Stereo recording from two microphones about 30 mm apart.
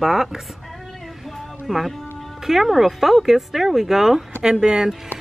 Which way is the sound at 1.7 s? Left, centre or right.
Centre.